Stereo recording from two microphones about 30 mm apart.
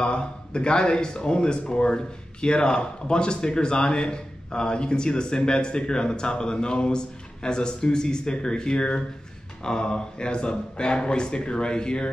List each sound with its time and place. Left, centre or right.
0.0 s speech: left